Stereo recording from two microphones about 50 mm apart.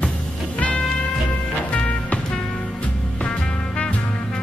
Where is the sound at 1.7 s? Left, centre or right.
Left.